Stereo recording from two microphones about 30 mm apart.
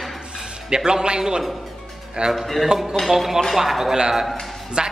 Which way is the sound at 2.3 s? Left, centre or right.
Centre.